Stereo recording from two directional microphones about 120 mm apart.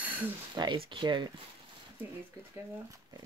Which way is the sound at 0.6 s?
45° right (ahead or behind).